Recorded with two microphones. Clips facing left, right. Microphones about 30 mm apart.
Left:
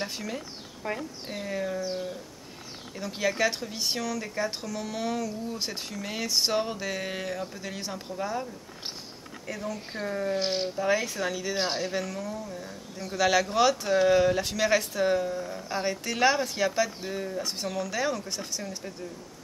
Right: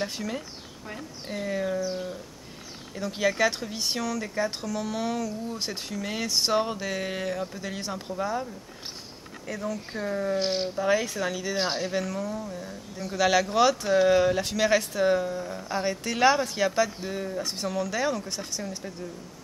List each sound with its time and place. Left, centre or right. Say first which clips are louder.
0.0 s speech: right 2 dB; centre
0.8 s a woman's voice: left 7 dB; left
1.2 s speech: right 6 dB; centre
2.9 s speech: right 3 dB; centre
9.5 s speech: right 2 dB; centre